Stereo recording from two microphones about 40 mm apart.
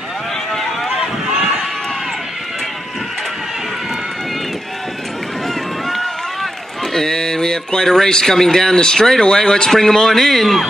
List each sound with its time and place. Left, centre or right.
0.6 s run: centre
5.5 s run: centre
6.8 s a man's voice: centre